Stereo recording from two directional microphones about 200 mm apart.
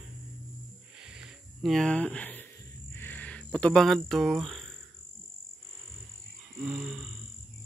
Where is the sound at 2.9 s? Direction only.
10° left (ahead or behind).